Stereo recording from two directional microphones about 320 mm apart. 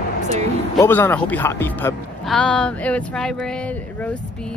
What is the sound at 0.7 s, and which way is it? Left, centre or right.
Speech, centre.